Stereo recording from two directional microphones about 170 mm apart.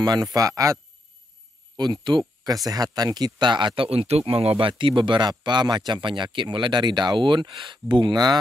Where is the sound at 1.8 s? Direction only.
25° right (ahead or behind).